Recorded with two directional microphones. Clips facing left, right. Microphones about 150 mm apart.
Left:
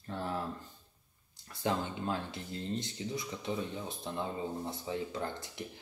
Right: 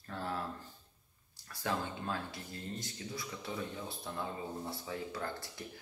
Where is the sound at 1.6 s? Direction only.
20° left (ahead or behind).